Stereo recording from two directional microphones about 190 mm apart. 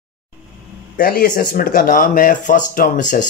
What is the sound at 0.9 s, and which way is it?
Speech, 50° left (ahead or behind).